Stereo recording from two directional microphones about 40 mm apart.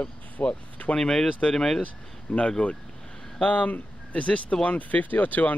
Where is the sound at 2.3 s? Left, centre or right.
Left.